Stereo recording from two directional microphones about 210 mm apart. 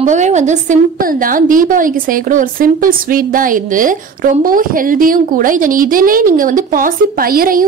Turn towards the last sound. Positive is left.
turn(degrees=-45)  # may be behind; listen again after turning